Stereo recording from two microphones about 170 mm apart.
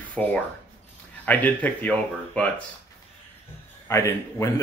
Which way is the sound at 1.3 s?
10° left (ahead or behind).